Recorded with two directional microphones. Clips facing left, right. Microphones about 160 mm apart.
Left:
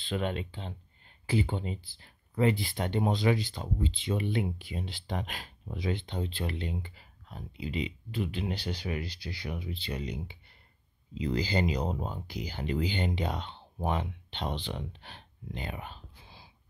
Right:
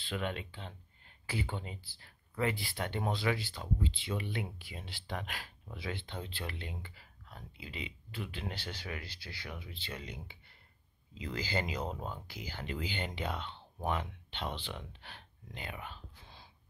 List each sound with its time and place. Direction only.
0.1 s speech: 30° left (ahead or behind)
11.3 s speech: 20° left (ahead or behind)
16.2 s a sound: 5° left (ahead or behind)